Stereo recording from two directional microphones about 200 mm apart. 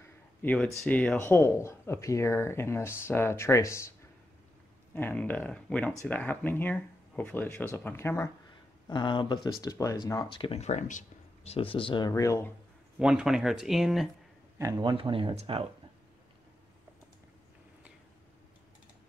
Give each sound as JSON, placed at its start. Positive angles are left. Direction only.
{"t": 0.4, "sound": "speech", "side_deg": 5}
{"t": 4.9, "sound": "speech", "side_deg": 10}
{"t": 12.1, "sound": "speech", "side_deg": 15}
{"t": 13.0, "sound": "speech", "side_deg": -5}
{"t": 14.6, "sound": "speech", "side_deg": -20}